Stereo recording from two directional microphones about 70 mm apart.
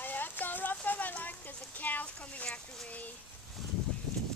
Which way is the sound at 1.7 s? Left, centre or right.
Left.